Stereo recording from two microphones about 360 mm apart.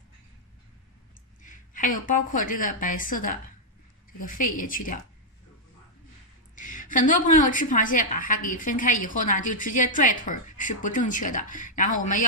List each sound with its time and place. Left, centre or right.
1.4 s a woman's voice: left
6.5 s a woman's voice: left